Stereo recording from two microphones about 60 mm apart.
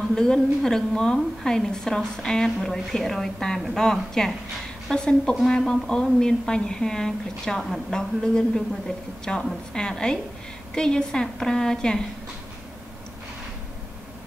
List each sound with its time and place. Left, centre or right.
0.1 s a woman's voice: centre